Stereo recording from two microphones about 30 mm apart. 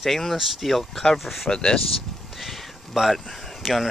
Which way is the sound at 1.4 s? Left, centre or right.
Left.